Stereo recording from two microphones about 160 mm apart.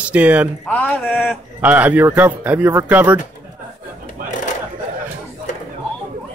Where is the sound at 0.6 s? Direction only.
10° left (ahead or behind).